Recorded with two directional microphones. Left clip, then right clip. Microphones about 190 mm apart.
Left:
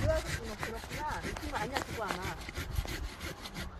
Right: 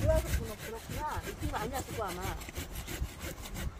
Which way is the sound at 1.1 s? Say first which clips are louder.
Even; 30° left (ahead or behind).